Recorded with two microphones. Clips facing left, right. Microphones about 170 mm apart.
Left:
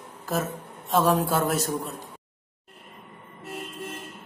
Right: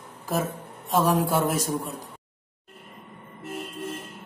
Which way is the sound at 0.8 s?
Centre (ahead or behind).